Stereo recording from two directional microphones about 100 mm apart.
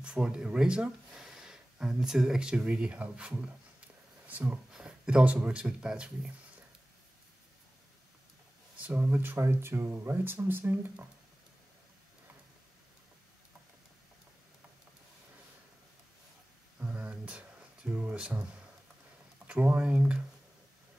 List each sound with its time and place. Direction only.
0.0 s speech: 5° right (ahead or behind)
8.7 s speech: 15° right (ahead or behind)
16.8 s a sound: 15° right (ahead or behind)
19.4 s speech: 15° right (ahead or behind)